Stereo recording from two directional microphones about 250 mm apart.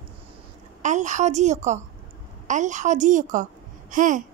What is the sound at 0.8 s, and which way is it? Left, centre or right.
A woman's voice, right.